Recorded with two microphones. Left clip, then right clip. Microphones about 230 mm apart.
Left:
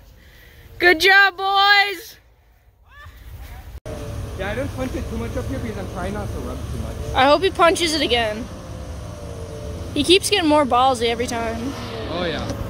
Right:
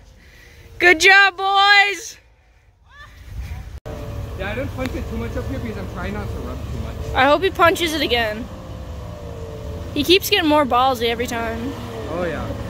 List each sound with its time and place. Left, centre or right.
0.7 s speech: centre
4.3 s speech: centre
7.2 s speech: centre
9.9 s speech: centre
11.6 s vehicle: right